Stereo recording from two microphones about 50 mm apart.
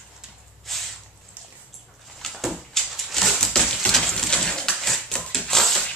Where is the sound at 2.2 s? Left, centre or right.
Centre.